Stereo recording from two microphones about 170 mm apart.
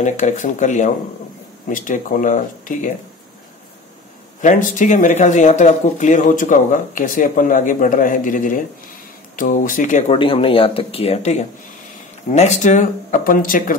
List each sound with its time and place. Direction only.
0.0 s speech: 45° left (ahead or behind)
4.4 s speech: 50° left (ahead or behind)
10.1 s speech: 30° left (ahead or behind); by 13.7 s 55° left (ahead or behind)